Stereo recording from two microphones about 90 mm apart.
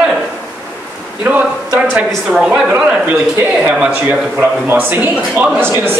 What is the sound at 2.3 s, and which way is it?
A woman's voice, 10° right (ahead or behind).